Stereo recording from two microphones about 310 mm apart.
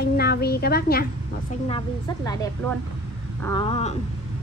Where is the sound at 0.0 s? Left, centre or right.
Left.